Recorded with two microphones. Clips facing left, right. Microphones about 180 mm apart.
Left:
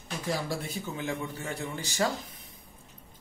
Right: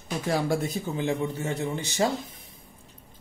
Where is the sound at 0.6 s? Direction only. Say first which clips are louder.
Right 6 dB; 30° right (ahead or behind).